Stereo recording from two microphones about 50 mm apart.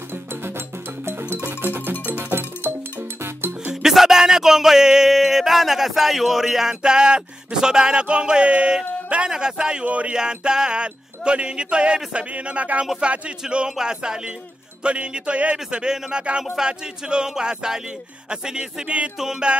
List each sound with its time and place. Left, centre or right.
1.0 s music: right
3.8 s music: centre; by 10.1 s right
10.1 s music: centre